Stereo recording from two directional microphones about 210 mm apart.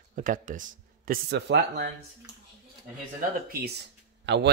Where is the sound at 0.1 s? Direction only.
40° right (ahead or behind).